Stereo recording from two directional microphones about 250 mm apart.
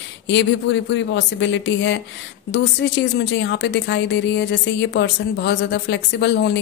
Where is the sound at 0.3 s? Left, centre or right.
Left.